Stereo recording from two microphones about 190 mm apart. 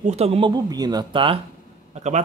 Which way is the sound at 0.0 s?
35° right (ahead or behind).